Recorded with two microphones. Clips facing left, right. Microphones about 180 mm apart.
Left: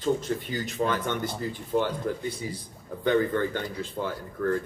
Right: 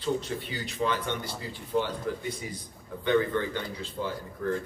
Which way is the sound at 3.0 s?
45° left (ahead or behind).